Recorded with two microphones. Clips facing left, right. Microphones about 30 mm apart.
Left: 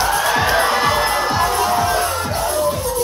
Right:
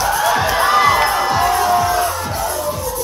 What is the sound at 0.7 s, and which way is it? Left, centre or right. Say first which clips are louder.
Crowd: right 4 dB; centre.